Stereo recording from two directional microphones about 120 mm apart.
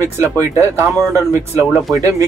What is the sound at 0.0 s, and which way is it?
Speech, 25° right (ahead or behind).